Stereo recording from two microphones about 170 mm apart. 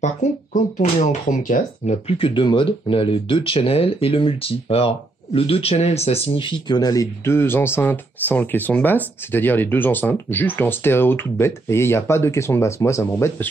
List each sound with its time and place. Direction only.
0.0 s speech: 50° left (ahead or behind); by 13.5 s 15° left (ahead or behind)